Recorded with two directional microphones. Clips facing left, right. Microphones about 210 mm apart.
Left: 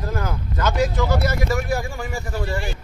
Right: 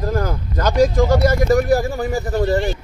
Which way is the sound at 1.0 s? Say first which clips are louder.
Right 7 dB; 45° right (ahead or behind).